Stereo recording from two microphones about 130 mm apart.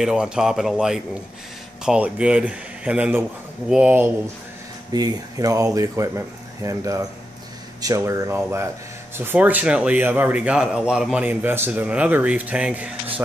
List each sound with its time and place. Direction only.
0.0 s a man's voice: 5° right (ahead or behind)
4.9 s speech: 30° right (ahead or behind); by 12.9 s 10° right (ahead or behind)